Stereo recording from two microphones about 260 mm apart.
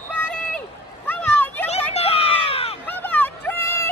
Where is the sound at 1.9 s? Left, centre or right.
Left.